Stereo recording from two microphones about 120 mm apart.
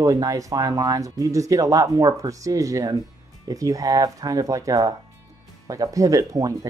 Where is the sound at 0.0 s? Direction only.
30° right (ahead or behind).